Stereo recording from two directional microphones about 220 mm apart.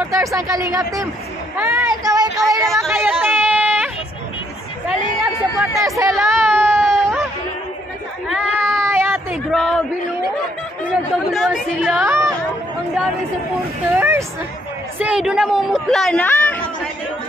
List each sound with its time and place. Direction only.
0.0 s speech: 15° right (ahead or behind)
2.6 s speech: centre (ahead or behind)
2.9 s a sound: 10° right (ahead or behind)
6.0 s speech: centre (ahead or behind)
6.5 s baby cry: 10° right (ahead or behind)
6.8 s a sound: centre (ahead or behind)
8.6 s a sound: 10° right (ahead or behind)
11.3 s speech: centre (ahead or behind)
12.0 s music: 15° right (ahead or behind)
13.9 s vehicle: 10° right (ahead or behind)
15.0 s speech: 5° right (ahead or behind)